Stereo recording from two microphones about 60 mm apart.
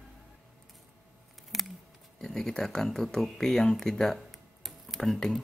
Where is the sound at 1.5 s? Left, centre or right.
Centre.